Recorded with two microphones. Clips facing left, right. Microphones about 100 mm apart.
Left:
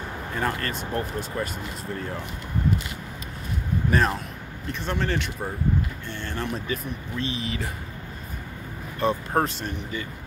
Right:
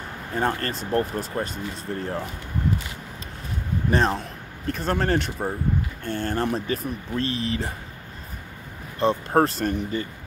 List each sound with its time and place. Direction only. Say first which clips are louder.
0.3 s speech: right 3 dB; 35° right (ahead or behind)
3.9 s speech: right 2 dB; 30° right (ahead or behind)
4.6 s speech: right 4 dB; 45° right (ahead or behind)
9.0 s speech: right 3 dB; 35° right (ahead or behind)